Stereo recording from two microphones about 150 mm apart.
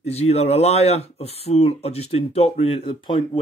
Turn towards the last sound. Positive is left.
turn(degrees=35)  # may be behind; listen again after turning